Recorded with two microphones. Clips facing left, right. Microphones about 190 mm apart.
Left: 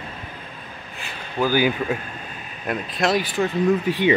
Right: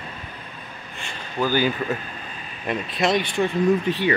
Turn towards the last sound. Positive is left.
turn(degrees=5)  # may be behind; listen again after turning